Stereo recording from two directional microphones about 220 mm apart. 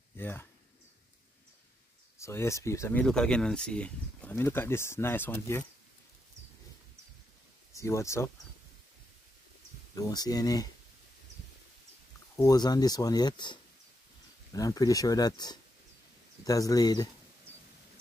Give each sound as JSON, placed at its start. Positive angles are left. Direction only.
{"t": 0.2, "sound": "speech", "side_deg": 10}
{"t": 2.1, "sound": "speech", "side_deg": 15}
{"t": 7.7, "sound": "speech", "side_deg": 15}
{"t": 9.9, "sound": "speech", "side_deg": 15}
{"t": 12.4, "sound": "speech", "side_deg": 15}